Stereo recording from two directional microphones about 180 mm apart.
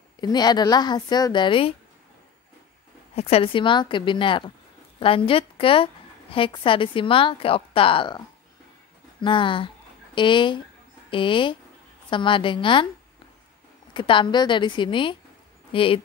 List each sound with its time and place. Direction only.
0.2 s a woman's voice: 25° left (ahead or behind)
3.2 s a woman's voice: 35° left (ahead or behind)
9.2 s a woman's voice: 25° left (ahead or behind)
13.9 s a woman's voice: 25° left (ahead or behind)